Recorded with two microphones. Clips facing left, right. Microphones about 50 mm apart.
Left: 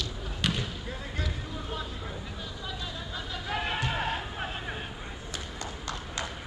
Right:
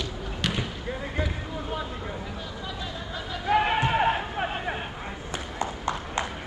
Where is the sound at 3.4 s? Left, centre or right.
Right.